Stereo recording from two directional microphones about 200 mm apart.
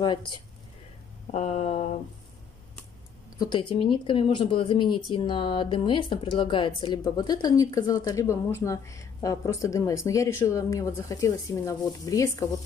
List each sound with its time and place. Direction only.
0.0 s speech: 20° left (ahead or behind)
1.3 s a sound: 30° left (ahead or behind)
3.3 s speech: 25° left (ahead or behind)